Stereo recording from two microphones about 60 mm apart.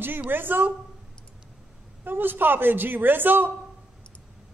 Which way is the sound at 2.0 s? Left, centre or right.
Right.